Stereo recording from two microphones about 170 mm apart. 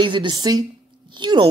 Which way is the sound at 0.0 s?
25° right (ahead or behind).